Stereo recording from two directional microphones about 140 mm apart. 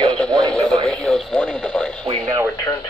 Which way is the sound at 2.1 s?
25° right (ahead or behind).